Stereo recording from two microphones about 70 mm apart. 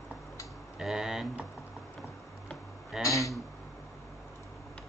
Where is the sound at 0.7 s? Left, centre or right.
Centre.